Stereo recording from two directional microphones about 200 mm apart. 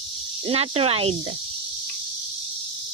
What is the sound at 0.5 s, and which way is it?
Speech, 30° right (ahead or behind).